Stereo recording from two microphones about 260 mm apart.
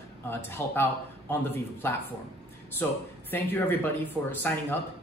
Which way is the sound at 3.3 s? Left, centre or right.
Centre.